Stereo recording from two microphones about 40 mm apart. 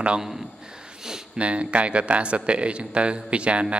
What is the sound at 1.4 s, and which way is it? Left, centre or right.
A man's voice, right.